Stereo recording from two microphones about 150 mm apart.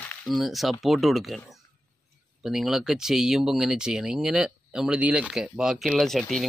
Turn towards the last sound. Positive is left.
turn(degrees=0)  # may be behind; listen again after turning